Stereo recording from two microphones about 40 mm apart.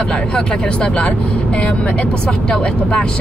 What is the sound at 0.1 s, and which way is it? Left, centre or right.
Speech, left.